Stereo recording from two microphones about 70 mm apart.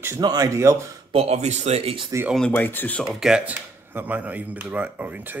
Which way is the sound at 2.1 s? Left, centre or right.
Right.